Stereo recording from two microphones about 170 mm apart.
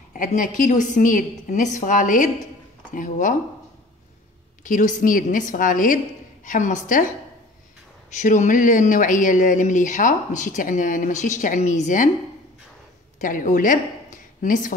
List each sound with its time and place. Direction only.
0.1 s speech: 50° left (ahead or behind)
4.6 s speech: 50° left (ahead or behind)
8.2 s speech: 45° left (ahead or behind)
13.2 s a woman's voice: 50° left (ahead or behind)